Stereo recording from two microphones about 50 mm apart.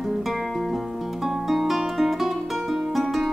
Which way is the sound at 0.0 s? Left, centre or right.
Centre.